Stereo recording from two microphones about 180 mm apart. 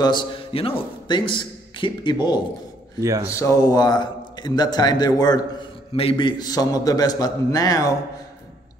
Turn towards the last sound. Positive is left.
turn(degrees=20)  # may be behind; listen again after turning